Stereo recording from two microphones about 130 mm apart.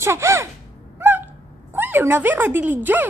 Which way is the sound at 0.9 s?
15° right (ahead or behind).